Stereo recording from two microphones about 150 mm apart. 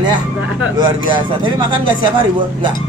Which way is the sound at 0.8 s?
30° right (ahead or behind).